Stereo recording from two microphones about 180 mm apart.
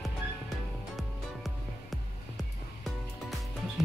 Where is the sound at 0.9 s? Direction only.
Centre (ahead or behind).